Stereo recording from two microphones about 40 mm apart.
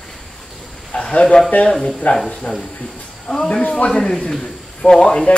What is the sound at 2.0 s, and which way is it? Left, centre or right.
Speech, left.